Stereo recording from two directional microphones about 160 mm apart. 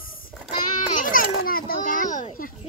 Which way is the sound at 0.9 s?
60° left (ahead or behind).